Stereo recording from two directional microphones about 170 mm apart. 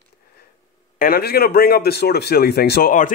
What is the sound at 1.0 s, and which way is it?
Speech, 65° left (ahead or behind).